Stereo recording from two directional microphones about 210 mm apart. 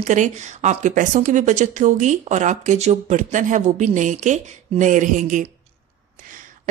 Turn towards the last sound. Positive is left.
turn(degrees=-40)  # may be behind; listen again after turning